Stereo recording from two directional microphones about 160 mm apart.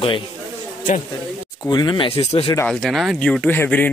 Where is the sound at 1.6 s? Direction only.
25° left (ahead or behind).